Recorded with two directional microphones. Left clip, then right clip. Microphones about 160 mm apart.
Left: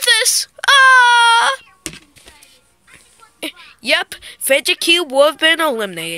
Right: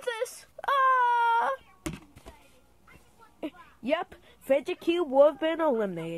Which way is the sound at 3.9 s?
25° left (ahead or behind).